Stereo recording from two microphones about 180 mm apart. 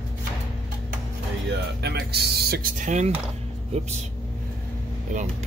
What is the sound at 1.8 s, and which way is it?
Speech, 65° right (ahead or behind).